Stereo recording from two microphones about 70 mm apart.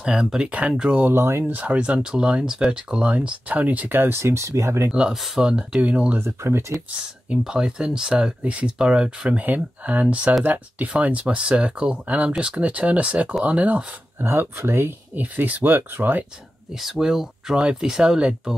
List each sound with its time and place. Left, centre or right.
0.0 s speech: centre
1.1 s speech: right
1.5 s speech: right
4.9 s speech: centre
6.1 s speech: right
7.0 s speech: centre
14.2 s speech: right
16.7 s speech: centre